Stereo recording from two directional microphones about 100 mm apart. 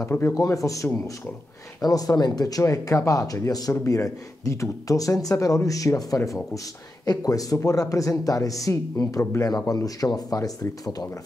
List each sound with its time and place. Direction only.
0.3 s speech: 35° left (ahead or behind)
9.5 s speech: 40° left (ahead or behind)